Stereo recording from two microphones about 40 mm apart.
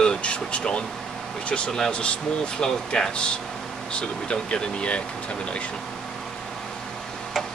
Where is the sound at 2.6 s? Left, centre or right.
Centre.